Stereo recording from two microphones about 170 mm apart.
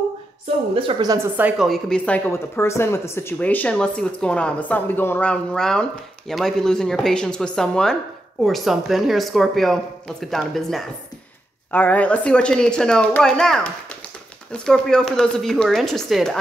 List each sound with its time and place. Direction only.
0.7 s a woman's voice: 30° right (ahead or behind)
1.1 s a woman's voice: 10° right (ahead or behind)
1.7 s speech: 5° left (ahead or behind)